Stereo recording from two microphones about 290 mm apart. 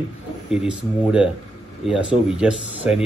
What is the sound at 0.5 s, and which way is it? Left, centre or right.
Speech, centre.